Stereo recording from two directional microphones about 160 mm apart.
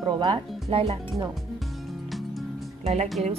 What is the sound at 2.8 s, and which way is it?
Speech, 40° right (ahead or behind).